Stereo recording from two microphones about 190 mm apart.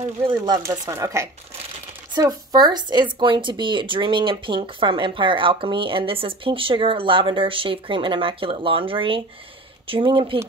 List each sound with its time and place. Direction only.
0.3 s speech: 20° right (ahead or behind)